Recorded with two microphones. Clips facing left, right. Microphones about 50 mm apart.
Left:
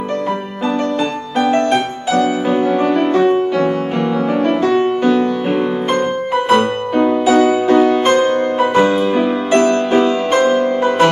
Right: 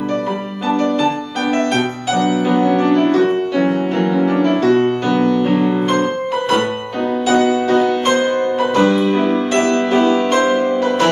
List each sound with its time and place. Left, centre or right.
2.5 s music: centre
4.6 s music: centre
7.0 s music: centre
10.4 s music: centre